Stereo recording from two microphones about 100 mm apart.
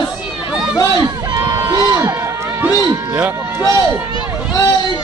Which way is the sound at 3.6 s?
30° right (ahead or behind).